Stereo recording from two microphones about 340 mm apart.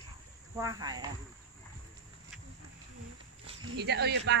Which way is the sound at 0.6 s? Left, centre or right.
Centre.